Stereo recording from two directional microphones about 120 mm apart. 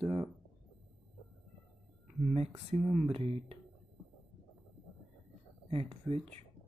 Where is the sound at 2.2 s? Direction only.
75° right (ahead or behind).